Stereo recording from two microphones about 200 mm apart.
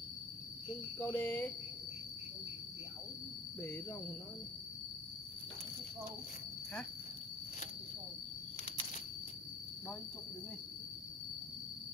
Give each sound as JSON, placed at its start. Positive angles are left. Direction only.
{"t": 0.9, "sound": "speech", "side_deg": 10}